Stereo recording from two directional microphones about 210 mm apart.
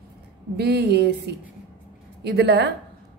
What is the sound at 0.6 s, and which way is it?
A woman's voice, 50° right (ahead or behind).